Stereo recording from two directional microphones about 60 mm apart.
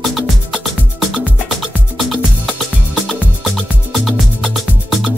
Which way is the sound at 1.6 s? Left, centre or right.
Centre.